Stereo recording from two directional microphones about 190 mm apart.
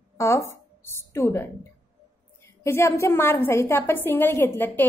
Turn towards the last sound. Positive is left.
turn(degrees=10)  # may be behind; listen again after turning